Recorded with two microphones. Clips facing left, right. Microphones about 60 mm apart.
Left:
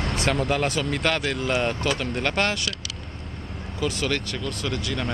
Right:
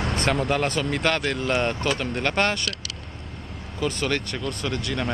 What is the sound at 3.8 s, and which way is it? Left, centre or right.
Speech, centre.